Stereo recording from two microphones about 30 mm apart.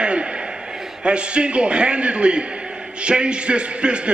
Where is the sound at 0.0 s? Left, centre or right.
Right.